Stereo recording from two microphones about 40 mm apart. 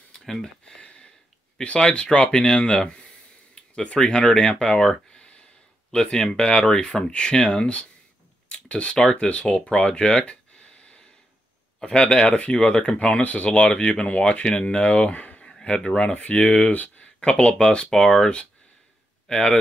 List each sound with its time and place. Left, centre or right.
0.2 s speech: centre
2.3 s speech: centre
5.1 s a sound: left
6.1 s speech: centre
8.5 s a sound: left
8.9 s speech: centre
10.2 s a sound: left
11.8 s speech: left
12.3 s speech: left
13.2 s speech: left
13.5 s speech: left
15.4 s speech: left
16.2 s speech: left
17.2 s speech: left